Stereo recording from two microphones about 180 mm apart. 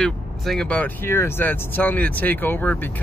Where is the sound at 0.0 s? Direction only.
5° left (ahead or behind).